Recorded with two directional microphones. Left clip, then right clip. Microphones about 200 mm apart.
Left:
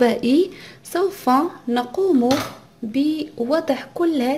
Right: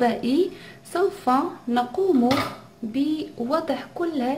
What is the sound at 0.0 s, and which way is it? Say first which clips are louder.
A woman's voice: left 4 dB; 30° left (ahead or behind).